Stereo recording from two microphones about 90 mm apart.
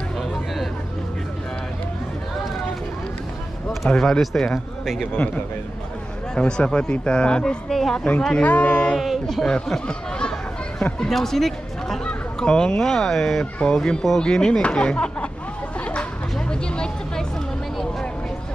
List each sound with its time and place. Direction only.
3.6 s speech: 5° left (ahead or behind)
5.1 s speech: 15° left (ahead or behind)
8.9 s speech: centre (ahead or behind)
15.8 s a sound: 10° left (ahead or behind)